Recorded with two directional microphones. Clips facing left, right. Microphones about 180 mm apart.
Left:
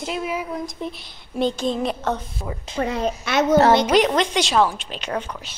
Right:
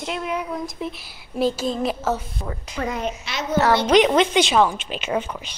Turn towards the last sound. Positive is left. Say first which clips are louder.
# right 3 dB
turn(degrees=-5)  # may be behind; listen again after turning